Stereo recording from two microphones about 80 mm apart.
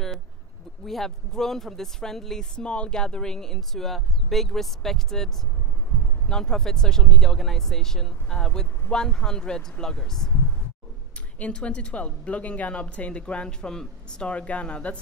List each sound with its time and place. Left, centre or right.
0.8 s speech: centre
5.9 s a sound: left
6.2 s a woman's voice: centre
11.3 s a woman's voice: centre